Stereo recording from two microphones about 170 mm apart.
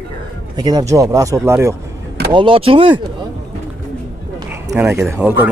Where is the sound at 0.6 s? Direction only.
25° right (ahead or behind).